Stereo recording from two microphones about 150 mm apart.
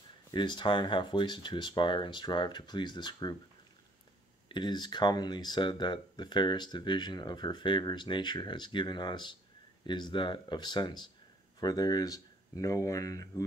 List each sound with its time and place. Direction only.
0.3 s speech: 30° left (ahead or behind)
4.5 s speech: 30° left (ahead or behind)